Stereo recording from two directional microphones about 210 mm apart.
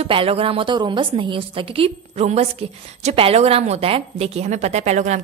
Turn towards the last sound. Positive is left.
turn(degrees=-35)  # may be behind; listen again after turning